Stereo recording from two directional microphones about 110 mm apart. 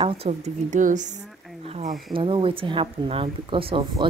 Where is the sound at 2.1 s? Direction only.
50° right (ahead or behind).